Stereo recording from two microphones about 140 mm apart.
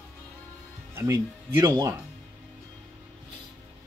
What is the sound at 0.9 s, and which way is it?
Speech, 20° right (ahead or behind).